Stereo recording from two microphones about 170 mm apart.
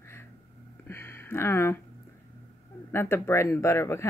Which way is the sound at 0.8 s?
15° left (ahead or behind).